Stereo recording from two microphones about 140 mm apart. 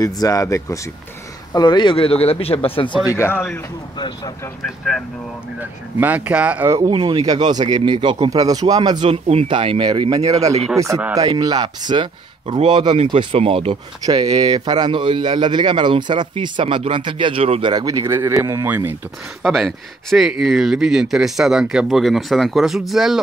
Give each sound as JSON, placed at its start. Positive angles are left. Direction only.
{"t": 0.0, "sound": "speech", "side_deg": 25}
{"t": 3.1, "sound": "speech", "side_deg": 15}
{"t": 5.6, "sound": "speech", "side_deg": -10}
{"t": 6.9, "sound": "a man's voice", "side_deg": -35}
{"t": 9.1, "sound": "speech", "side_deg": -45}
{"t": 14.0, "sound": "speech", "side_deg": -30}
{"t": 19.4, "sound": "speech", "side_deg": 0}